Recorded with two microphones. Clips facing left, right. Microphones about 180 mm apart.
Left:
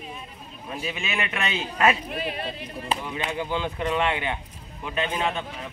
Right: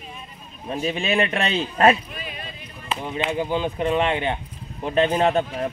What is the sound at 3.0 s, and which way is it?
Speech, 25° right (ahead or behind).